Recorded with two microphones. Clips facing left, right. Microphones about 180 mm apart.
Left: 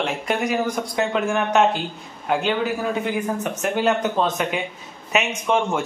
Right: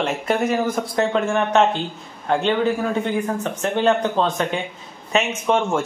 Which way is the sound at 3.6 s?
10° left (ahead or behind).